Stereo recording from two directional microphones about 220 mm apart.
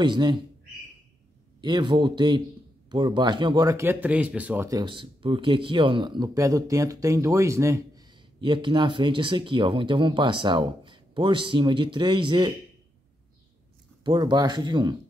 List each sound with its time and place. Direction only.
0.0 s speech: 20° right (ahead or behind)
1.6 s speech: 20° right (ahead or behind)
14.0 s speech: 20° right (ahead or behind)